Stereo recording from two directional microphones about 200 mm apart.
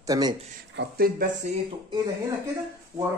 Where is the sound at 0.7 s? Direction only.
55° right (ahead or behind); by 1.6 s 40° right (ahead or behind).